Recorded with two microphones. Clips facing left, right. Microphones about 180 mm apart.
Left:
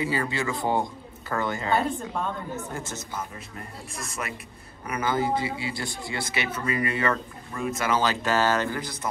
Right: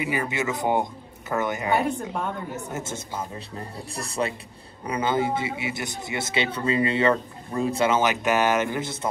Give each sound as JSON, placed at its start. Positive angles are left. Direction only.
{"t": 0.0, "sound": "a man's voice", "side_deg": -20}